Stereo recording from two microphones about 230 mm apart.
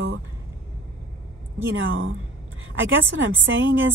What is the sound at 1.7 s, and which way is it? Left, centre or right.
A woman's voice, right.